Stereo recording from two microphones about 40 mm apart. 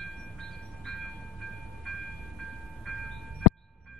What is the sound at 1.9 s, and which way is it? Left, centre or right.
Train, centre.